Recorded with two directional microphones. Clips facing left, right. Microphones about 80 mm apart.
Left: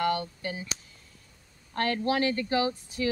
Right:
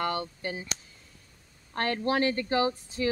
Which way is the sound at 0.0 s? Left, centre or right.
Right.